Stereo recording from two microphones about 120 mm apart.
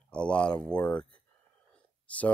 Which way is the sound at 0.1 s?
10° left (ahead or behind).